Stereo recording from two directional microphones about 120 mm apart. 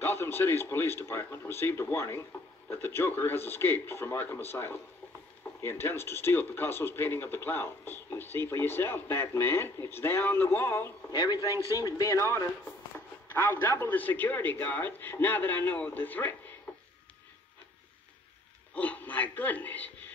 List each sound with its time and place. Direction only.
0.0 s speech: 20° left (ahead or behind)
11.1 s a man's voice: 35° left (ahead or behind); by 16.3 s 15° left (ahead or behind)
18.8 s a man's voice: 15° left (ahead or behind)